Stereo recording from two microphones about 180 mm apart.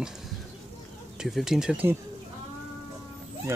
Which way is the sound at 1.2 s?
Centre (ahead or behind).